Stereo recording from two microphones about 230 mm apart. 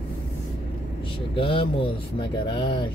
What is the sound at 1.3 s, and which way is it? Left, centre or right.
Speech, left.